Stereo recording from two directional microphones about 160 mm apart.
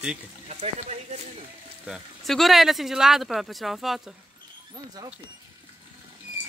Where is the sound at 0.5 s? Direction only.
45° right (ahead or behind).